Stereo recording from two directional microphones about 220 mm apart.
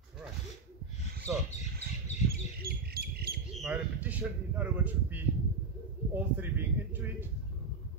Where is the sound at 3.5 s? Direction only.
5° right (ahead or behind).